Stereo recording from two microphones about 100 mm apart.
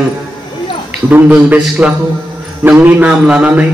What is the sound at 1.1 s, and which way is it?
A man's voice, 15° right (ahead or behind).